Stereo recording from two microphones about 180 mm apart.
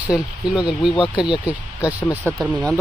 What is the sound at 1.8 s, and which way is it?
Speech, 15° left (ahead or behind).